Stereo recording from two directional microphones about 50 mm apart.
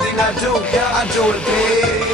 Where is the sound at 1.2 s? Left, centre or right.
Centre.